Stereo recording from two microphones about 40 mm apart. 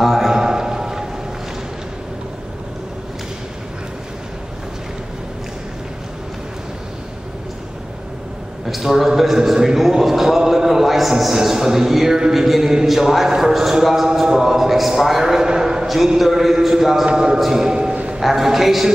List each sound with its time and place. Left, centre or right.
0.0 s a sound: centre
8.6 s a man's voice: centre
17.0 s a man's voice: centre
18.2 s a man's voice: centre